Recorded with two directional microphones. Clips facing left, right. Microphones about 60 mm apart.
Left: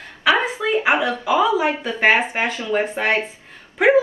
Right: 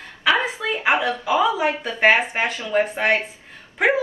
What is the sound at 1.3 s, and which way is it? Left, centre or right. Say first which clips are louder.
Speech: left 2 dB; left.